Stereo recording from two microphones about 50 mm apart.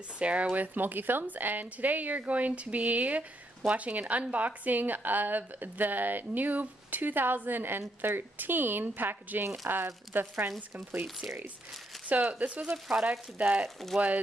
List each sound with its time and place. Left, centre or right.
0.2 s a woman's voice: right
12.1 s a woman's voice: right
12.6 s speech: centre
13.4 s speech: right